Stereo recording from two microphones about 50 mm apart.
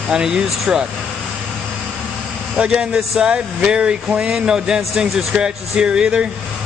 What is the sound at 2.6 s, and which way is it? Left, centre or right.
Speech, centre.